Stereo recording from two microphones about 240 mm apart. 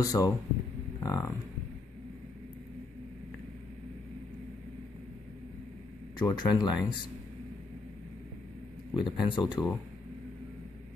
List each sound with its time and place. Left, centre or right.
0.0 s speech: centre
6.1 s speech: centre
8.9 s speech: centre